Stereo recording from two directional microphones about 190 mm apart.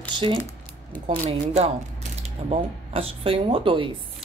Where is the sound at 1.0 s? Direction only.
35° right (ahead or behind).